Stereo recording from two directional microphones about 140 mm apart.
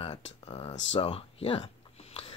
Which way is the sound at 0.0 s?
45° left (ahead or behind).